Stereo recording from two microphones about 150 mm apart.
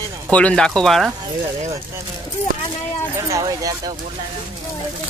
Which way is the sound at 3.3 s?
25° right (ahead or behind).